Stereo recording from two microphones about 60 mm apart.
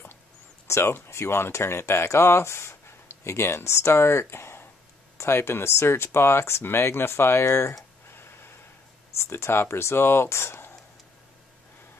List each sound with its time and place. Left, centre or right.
0.7 s speech: left
8.1 s a sound: left
9.1 s speech: left